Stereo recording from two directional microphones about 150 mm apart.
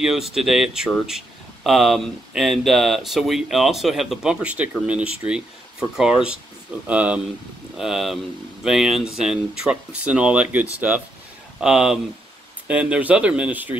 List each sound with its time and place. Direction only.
0.0 s speech: 5° right (ahead or behind)